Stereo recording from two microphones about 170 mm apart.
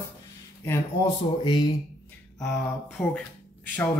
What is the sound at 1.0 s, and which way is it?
Speech, 25° left (ahead or behind).